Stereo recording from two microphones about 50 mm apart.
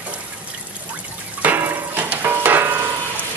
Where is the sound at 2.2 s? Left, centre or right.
Right.